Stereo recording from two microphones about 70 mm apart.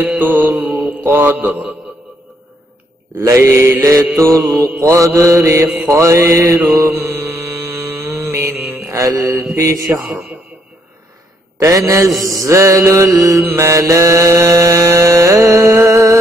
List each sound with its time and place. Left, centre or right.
0.0 s mantra: right
0.7 s mantra: centre
1.0 s mantra: right
3.2 s mantra: right
4.3 s mantra: right
4.7 s mantra: right
8.8 s mantra: right
9.9 s mantra: right
11.5 s a sound: right
12.1 s music: centre
12.4 s mantra: right